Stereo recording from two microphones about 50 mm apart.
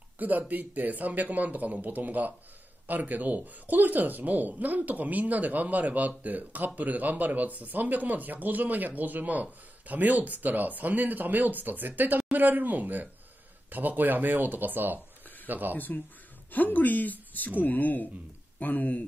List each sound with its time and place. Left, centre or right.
0.2 s speech: right
15.7 s speech: left